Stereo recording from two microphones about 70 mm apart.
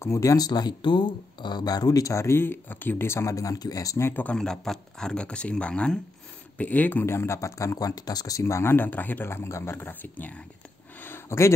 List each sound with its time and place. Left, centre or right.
0.0 s speech: left
0.5 s speech: left
4.0 s speech: left
4.3 s speech: centre; by 7.2 s left
7.2 s speech: left
11.0 s a sound: left